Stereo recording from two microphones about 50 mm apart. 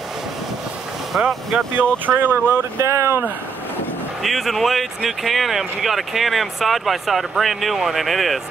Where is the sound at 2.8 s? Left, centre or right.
Right.